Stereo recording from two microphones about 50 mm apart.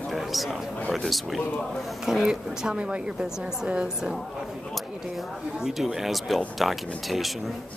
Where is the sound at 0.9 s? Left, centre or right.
Centre.